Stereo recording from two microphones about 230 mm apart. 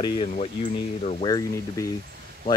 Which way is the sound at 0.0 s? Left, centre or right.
Left.